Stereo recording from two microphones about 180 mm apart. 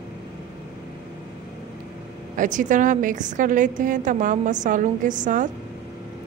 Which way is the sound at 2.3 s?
45° right (ahead or behind).